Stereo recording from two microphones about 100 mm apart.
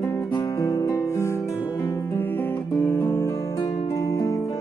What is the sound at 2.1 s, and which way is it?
Music, 20° left (ahead or behind).